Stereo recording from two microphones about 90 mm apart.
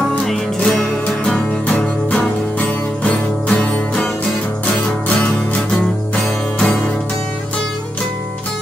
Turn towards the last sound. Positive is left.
turn(degrees=10)  # may be behind; listen again after turning